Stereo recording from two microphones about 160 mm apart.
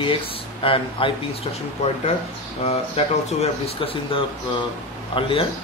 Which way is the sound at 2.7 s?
40° left (ahead or behind).